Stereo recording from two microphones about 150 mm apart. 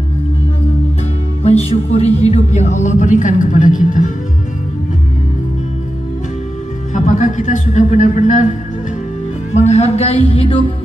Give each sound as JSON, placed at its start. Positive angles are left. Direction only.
{"t": 1.4, "sound": "speech", "side_deg": 45}
{"t": 6.9, "sound": "a man's voice", "side_deg": 55}
{"t": 9.5, "sound": "speech", "side_deg": 50}